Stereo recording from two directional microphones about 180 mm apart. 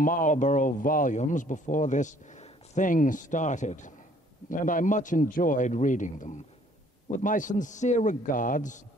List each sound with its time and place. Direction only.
0.0 s speech: 45° left (ahead or behind)